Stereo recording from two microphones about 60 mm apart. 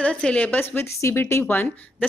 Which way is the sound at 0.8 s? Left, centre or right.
Left.